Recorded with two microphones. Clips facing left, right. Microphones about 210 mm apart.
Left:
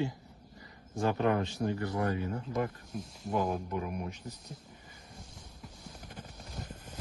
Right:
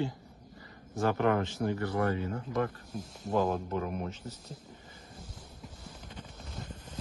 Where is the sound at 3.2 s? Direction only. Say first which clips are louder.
Right 3 dB; 25° right (ahead or behind).